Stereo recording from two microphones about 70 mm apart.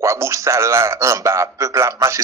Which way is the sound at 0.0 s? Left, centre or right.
Right.